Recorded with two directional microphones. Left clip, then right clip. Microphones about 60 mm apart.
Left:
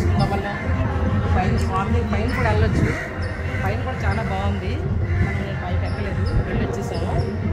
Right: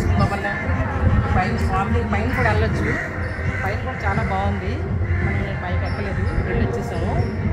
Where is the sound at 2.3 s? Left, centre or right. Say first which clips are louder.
Right 2 dB; centre.